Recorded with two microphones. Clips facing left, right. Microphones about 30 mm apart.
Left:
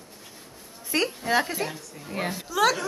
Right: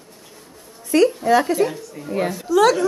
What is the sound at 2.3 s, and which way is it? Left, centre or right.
Speech, centre.